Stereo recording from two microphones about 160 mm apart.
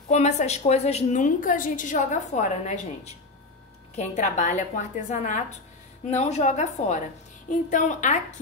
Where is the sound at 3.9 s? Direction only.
45° left (ahead or behind).